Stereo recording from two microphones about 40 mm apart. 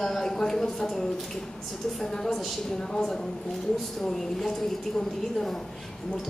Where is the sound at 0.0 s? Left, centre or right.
Centre.